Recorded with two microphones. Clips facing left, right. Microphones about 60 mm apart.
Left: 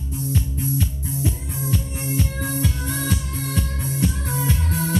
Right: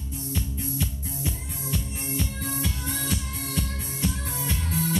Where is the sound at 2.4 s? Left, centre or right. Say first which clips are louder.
Left 6 dB; left.